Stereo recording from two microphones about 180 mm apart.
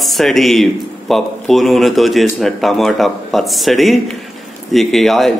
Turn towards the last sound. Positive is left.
turn(degrees=0)  # may be behind; listen again after turning